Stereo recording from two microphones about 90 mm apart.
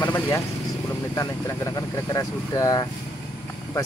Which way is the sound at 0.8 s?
35° left (ahead or behind).